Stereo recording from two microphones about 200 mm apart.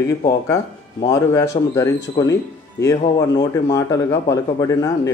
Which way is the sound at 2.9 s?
20° left (ahead or behind).